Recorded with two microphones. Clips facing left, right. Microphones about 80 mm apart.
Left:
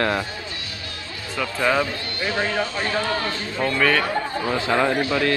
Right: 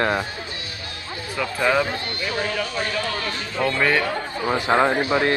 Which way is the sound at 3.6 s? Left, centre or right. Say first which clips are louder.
Even; right.